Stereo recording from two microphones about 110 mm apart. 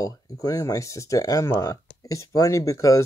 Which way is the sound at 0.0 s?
30° left (ahead or behind).